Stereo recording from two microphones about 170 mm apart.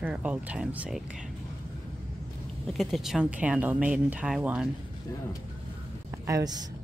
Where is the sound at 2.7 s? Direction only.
Centre (ahead or behind).